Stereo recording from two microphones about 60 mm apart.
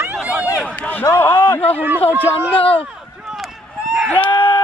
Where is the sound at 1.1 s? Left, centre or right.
Left.